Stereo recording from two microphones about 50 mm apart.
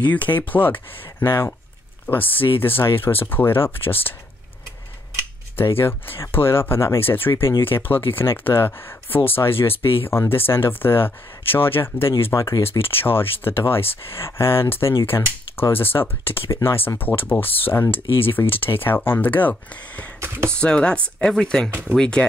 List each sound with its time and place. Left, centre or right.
0.0 s speech: left
2.0 s speech: left
5.6 s speech: left
7.0 s speech: left
12.3 s speech: left
12.6 s speech: left
20.2 s speech: right
20.5 s speech: centre